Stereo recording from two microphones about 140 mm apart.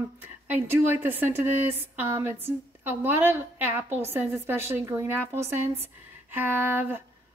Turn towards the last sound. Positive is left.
turn(degrees=-15)  # may be behind; listen again after turning